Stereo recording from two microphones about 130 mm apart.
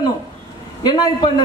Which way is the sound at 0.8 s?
35° left (ahead or behind).